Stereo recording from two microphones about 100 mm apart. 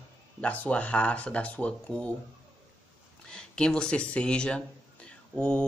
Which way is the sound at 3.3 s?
10° left (ahead or behind).